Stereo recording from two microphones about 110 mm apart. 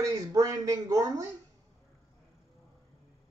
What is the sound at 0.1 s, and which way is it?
A man's voice, 30° right (ahead or behind).